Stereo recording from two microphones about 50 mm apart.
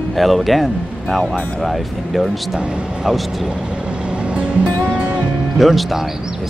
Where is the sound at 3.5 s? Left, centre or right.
Centre.